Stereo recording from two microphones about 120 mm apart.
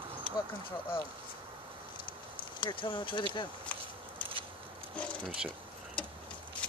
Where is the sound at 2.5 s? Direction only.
45° left (ahead or behind).